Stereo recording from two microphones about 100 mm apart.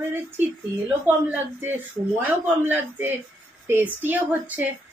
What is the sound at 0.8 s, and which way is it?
A woman's voice, 15° right (ahead or behind).